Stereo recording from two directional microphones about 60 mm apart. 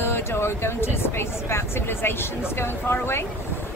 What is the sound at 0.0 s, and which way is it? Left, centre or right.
Speech, left.